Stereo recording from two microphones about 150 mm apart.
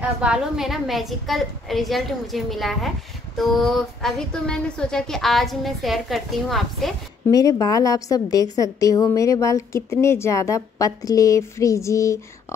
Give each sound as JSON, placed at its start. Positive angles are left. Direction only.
{"t": 0.2, "sound": "speech", "side_deg": -5}
{"t": 7.2, "sound": "a woman's voice", "side_deg": 25}